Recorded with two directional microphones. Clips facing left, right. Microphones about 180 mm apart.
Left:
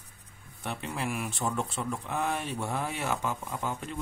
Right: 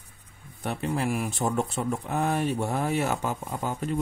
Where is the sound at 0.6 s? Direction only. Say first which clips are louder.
Right 6 dB; 40° right (ahead or behind).